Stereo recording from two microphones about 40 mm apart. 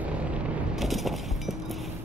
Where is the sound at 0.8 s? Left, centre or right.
Centre.